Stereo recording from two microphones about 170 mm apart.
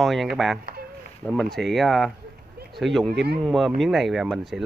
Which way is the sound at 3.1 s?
70° right (ahead or behind).